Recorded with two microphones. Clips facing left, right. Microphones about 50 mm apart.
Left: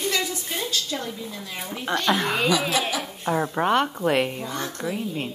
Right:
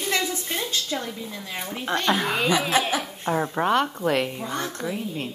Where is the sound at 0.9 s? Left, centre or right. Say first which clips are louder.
Right 1 dB; centre.